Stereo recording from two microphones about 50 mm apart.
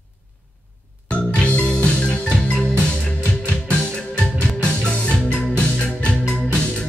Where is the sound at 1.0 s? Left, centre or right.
Left.